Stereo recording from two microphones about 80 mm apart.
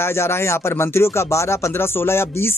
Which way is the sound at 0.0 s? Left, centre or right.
Left.